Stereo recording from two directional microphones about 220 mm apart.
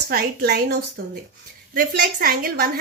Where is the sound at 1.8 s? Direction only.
40° right (ahead or behind).